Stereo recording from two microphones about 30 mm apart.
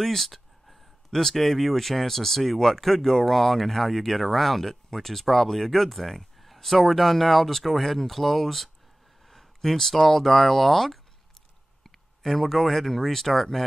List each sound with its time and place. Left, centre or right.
0.0 s speech: centre